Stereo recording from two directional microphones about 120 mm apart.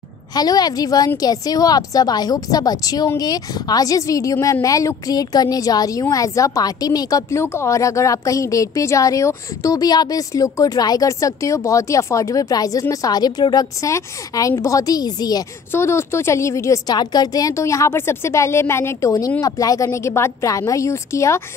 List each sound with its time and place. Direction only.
0.3 s a woman's voice: 35° left (ahead or behind)
15.7 s a woman's voice: 20° left (ahead or behind)